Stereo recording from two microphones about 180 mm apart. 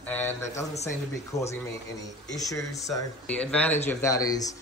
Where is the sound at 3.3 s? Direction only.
5° left (ahead or behind).